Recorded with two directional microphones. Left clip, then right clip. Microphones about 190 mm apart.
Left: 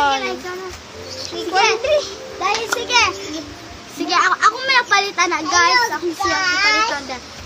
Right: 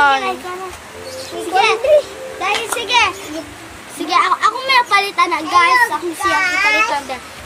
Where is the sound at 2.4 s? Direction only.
20° right (ahead or behind).